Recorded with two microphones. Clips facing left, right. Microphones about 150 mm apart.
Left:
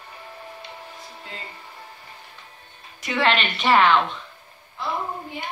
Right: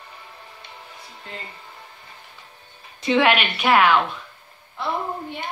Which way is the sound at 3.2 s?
10° right (ahead or behind).